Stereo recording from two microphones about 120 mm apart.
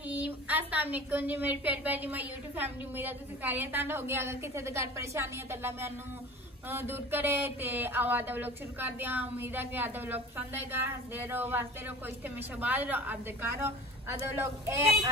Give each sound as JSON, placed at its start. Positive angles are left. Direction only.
{"t": 0.1, "sound": "a woman's voice", "side_deg": -15}